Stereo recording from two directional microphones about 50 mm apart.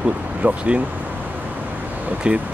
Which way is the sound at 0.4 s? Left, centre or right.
Right.